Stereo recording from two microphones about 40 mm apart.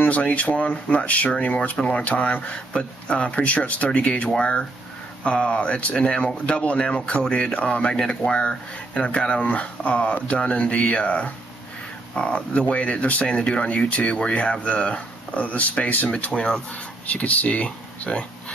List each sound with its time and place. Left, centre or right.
0.0 s speech: left
1.8 s speech: centre
2.0 s speech: left
9.5 s speech: left
16.3 s speech: left
17.1 s speech: left